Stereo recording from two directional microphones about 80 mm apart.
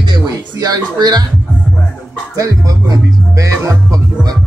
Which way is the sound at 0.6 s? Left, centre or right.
Right.